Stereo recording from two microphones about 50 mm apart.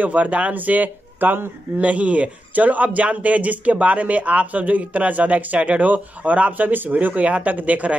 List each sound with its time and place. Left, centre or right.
0.0 s speech: right
1.9 s a man's voice: right